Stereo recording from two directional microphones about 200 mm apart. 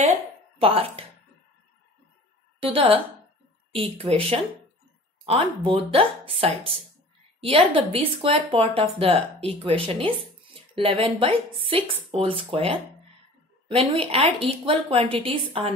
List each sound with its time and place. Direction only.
0.6 s speech: 30° right (ahead or behind)
2.6 s speech: 25° right (ahead or behind)